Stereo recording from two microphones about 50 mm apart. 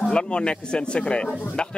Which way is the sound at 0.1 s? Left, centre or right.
Centre.